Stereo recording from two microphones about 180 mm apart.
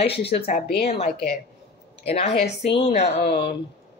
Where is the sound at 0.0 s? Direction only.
65° left (ahead or behind).